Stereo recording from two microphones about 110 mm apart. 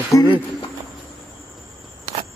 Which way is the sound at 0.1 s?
30° left (ahead or behind).